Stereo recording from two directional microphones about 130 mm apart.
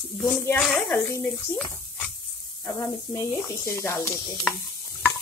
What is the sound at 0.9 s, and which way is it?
Speech, 25° left (ahead or behind).